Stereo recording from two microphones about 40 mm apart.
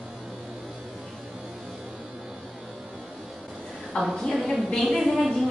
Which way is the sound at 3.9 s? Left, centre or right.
Left.